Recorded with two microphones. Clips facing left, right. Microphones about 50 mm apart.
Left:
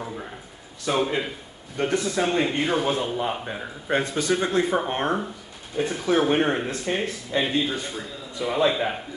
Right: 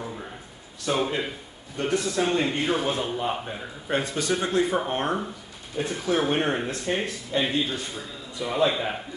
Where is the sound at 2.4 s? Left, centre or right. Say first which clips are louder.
Left 2 dB; centre.